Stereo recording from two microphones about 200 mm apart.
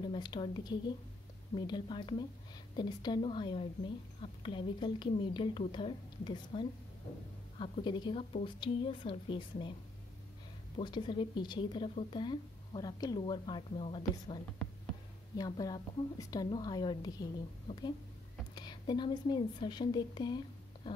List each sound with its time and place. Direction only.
0.0 s a woman's voice: 20° left (ahead or behind)
10.8 s a woman's voice: 25° left (ahead or behind)